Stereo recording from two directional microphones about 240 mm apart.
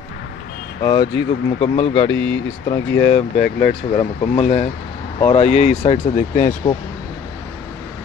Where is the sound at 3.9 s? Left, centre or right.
Left.